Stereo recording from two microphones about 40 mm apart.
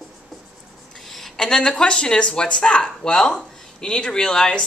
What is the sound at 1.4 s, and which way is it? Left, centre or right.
Speech, centre.